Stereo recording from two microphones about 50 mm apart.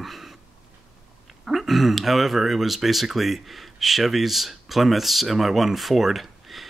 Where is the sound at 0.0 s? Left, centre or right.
Centre.